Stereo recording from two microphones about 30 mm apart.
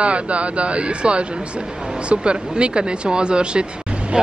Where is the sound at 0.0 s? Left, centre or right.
Right.